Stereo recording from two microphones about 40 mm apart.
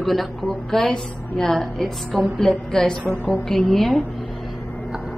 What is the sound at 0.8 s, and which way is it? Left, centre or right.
A woman's voice, centre.